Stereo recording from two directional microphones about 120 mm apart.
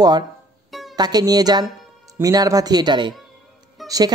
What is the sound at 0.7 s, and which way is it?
Music, centre (ahead or behind).